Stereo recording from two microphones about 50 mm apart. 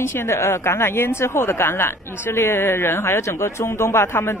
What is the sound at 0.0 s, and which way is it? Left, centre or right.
A woman's voice, left.